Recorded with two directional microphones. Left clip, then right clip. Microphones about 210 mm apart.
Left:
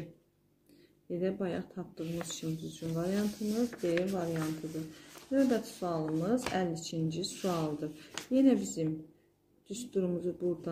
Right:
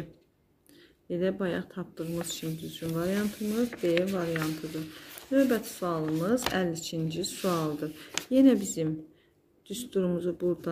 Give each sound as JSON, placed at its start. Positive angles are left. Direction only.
{"t": 1.0, "sound": "speech", "side_deg": -40}